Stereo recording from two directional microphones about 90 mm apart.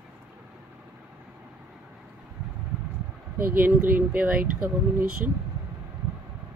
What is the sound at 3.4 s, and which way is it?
Speech, 20° right (ahead or behind).